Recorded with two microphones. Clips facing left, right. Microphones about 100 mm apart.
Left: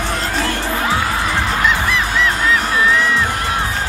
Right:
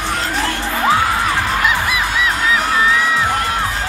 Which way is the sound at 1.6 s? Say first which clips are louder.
Even; 10° right (ahead or behind).